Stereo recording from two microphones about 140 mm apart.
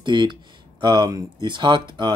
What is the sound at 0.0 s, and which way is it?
Speech, 35° right (ahead or behind).